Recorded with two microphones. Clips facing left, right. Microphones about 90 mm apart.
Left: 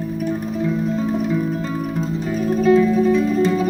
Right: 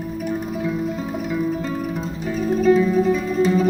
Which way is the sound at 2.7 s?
10° right (ahead or behind).